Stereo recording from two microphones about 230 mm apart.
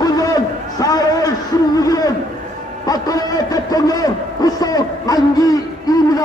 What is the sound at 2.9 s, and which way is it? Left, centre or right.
A man's voice, centre.